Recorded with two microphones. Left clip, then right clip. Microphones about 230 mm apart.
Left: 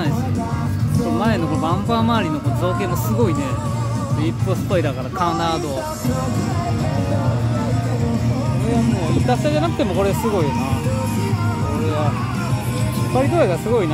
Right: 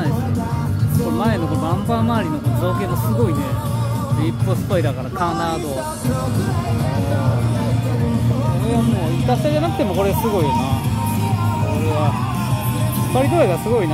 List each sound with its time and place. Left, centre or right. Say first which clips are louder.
1.2 s speech: left 2 dB; centre
4.7 s speech: even; centre
9.3 s speech: right 1 dB; centre
13.1 s speech: right 1 dB; centre